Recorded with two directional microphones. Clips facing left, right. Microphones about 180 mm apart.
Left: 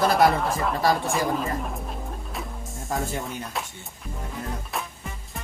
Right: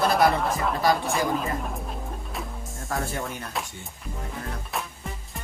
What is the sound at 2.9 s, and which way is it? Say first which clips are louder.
Speech: left 1 dB; 20° left (ahead or behind).